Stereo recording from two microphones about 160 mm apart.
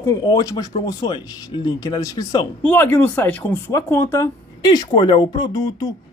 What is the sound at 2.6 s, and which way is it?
Speech, 10° left (ahead or behind).